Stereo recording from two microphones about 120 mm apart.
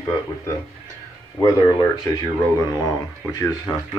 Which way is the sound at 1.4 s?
25° left (ahead or behind).